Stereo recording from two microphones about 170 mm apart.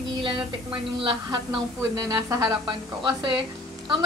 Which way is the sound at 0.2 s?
30° right (ahead or behind).